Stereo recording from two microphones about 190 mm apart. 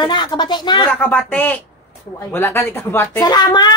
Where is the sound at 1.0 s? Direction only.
10° left (ahead or behind).